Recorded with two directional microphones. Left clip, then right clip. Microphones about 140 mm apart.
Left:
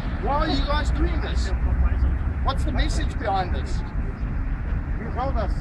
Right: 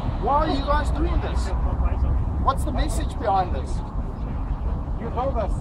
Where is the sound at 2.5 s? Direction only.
15° left (ahead or behind).